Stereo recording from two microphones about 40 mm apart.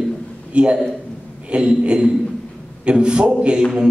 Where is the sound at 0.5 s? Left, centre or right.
Right.